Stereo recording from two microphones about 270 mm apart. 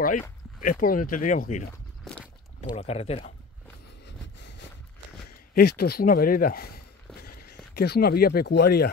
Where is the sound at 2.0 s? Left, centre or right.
Centre.